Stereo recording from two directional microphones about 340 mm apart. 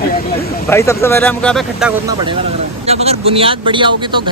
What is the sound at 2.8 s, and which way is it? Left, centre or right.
Speech, centre.